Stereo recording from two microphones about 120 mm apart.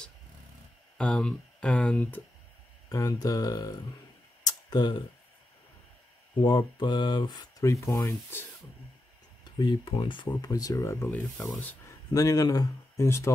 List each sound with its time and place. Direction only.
0.9 s speech: 10° left (ahead or behind)
2.9 s speech: 30° left (ahead or behind)
4.5 s a sound: 35° left (ahead or behind)
6.4 s speech: 40° left (ahead or behind)
9.4 s speech: 40° left (ahead or behind)
10.2 s speech: 30° left (ahead or behind)
12.1 s speech: 30° left (ahead or behind)